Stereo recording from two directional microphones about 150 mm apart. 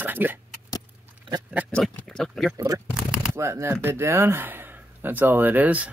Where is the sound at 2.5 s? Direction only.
25° right (ahead or behind).